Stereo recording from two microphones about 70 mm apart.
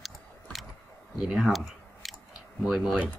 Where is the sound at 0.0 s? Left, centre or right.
Centre.